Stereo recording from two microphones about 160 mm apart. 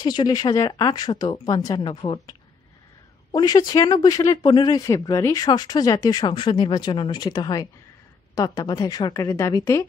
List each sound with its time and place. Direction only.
0.0 s speech: 25° left (ahead or behind)